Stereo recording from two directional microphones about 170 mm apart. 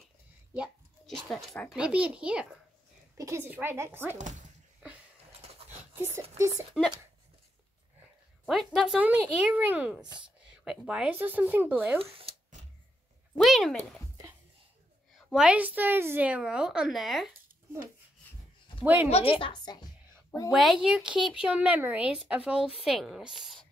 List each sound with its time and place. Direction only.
0.6 s speech: centre (ahead or behind)
3.2 s speech: 15° right (ahead or behind)
4.2 s speech: 45° right (ahead or behind)
5.7 s a sound: 15° right (ahead or behind)
6.7 s a woman's voice: centre (ahead or behind)
8.5 s speech: centre (ahead or behind)
12.0 s shuffling cards: 35° right (ahead or behind)
13.4 s a woman's voice: centre (ahead or behind)
15.1 s a woman's voice: centre (ahead or behind)
19.0 s a woman's voice: 35° left (ahead or behind)
20.2 s a sound: 20° left (ahead or behind)
20.5 s a woman's voice: centre (ahead or behind)